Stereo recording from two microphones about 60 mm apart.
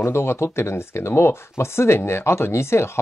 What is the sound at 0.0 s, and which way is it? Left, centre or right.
Speech, left.